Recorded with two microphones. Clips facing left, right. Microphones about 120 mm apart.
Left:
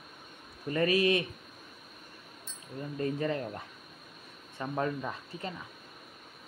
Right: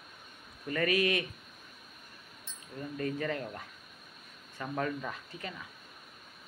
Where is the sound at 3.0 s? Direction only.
25° left (ahead or behind).